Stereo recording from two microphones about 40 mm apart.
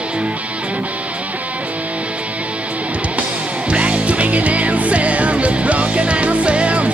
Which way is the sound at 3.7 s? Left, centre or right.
Right.